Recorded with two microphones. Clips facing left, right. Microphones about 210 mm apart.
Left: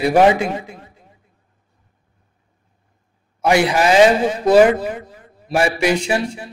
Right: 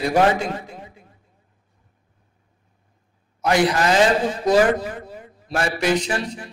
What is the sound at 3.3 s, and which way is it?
A man's voice, 10° left (ahead or behind).